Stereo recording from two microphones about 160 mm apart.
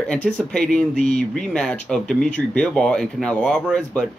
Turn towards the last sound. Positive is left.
turn(degrees=5)  # may be behind; listen again after turning